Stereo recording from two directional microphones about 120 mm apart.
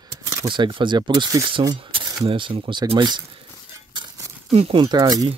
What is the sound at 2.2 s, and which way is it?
Speech, 45° right (ahead or behind).